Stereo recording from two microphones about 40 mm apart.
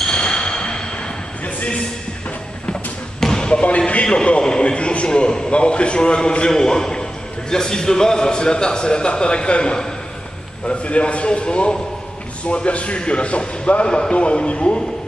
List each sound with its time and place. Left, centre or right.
0.0 s a sound: centre
3.2 s basketball bounce: centre
3.6 s a man's voice: left